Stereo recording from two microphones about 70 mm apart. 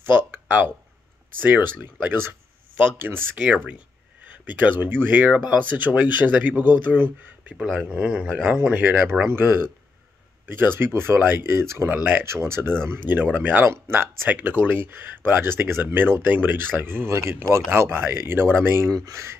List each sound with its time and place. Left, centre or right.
0.0 s a sound: right
1.4 s speech: right
4.3 s speech: right
8.7 s speech: right
12.0 s speech: right
12.3 s speech: right
18.9 s speech: right